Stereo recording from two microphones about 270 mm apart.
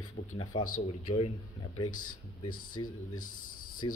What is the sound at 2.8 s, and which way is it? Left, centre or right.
Speech, centre.